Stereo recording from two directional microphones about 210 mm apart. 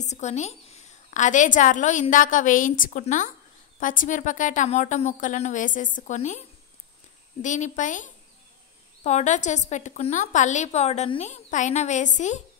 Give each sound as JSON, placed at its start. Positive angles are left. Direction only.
{"t": 0.0, "sound": "a woman's voice", "side_deg": 35}
{"t": 7.4, "sound": "a woman's voice", "side_deg": 35}